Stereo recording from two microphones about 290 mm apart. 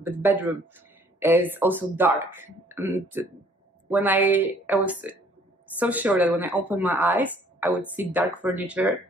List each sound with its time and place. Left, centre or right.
0.0 s speech: centre